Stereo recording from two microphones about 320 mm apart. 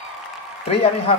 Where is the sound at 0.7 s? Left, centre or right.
Centre.